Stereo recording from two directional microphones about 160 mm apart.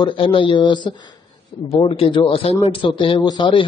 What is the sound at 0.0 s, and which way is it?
A man's voice, 30° left (ahead or behind).